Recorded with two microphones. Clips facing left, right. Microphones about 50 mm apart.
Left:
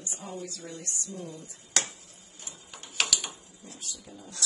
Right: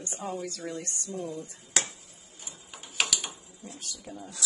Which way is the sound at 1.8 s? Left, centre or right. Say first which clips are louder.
Right 1 dB; centre.